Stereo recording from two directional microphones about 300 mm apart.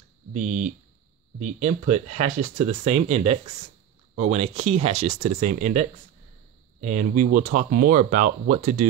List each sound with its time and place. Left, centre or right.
0.3 s speech: right